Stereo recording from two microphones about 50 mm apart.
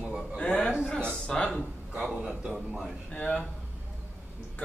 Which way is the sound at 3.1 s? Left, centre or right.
Left.